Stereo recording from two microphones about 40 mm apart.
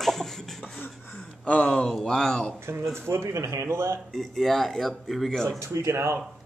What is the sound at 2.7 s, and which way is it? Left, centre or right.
Speech, right.